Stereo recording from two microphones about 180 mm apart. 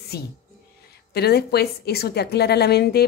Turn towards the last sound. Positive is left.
turn(degrees=65)  # may be behind; listen again after turning